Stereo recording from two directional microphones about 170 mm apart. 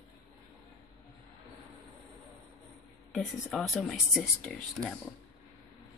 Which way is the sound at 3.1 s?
Centre (ahead or behind).